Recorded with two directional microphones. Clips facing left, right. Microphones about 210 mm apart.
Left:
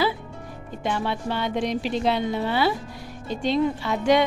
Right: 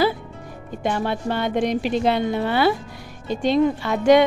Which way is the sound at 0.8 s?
50° right (ahead or behind).